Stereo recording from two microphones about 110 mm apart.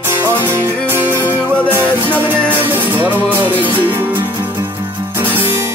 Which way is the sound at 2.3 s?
20° right (ahead or behind).